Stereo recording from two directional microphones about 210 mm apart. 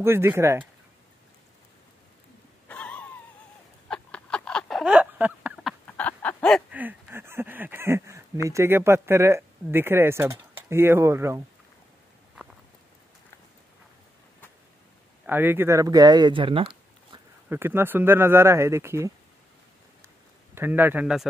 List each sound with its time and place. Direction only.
0.0 s speech: 10° right (ahead or behind)
2.7 s wheeze: 5° left (ahead or behind)
3.9 s a sound: 5° left (ahead or behind)
6.7 s a sound: 10° right (ahead or behind)
8.5 s speech: 10° right (ahead or behind)
15.2 s speech: 10° right (ahead or behind)
17.5 s speech: 10° right (ahead or behind)
20.5 s speech: 10° right (ahead or behind)